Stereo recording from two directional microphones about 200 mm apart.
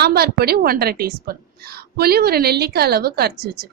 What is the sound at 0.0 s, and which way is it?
A woman's voice, 50° right (ahead or behind).